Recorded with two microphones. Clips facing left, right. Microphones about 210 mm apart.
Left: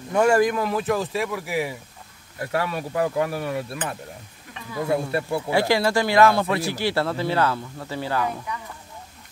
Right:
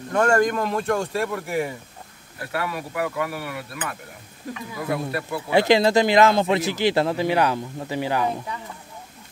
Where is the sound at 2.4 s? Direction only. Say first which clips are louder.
Left 3 dB; 25° left (ahead or behind).